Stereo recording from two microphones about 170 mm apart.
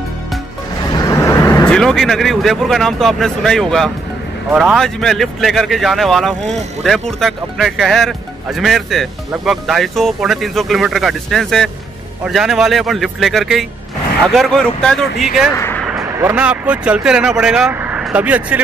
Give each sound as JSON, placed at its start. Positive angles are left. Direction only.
{"t": 0.9, "sound": "vehicle", "side_deg": 20}
{"t": 1.7, "sound": "speech", "side_deg": 5}
{"t": 15.5, "sound": "speech", "side_deg": 15}
{"t": 15.9, "sound": "speech", "side_deg": -15}